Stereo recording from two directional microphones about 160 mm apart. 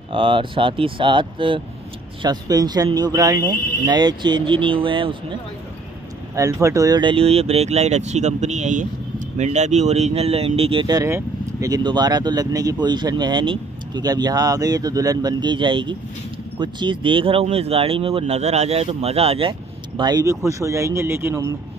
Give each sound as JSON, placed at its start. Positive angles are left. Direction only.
{"t": 0.1, "sound": "speech", "side_deg": -35}
{"t": 6.3, "sound": "speech", "side_deg": -20}
{"t": 20.0, "sound": "speech", "side_deg": -25}